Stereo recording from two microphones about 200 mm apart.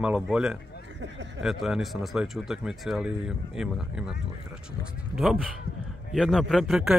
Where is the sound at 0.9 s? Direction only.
60° right (ahead or behind).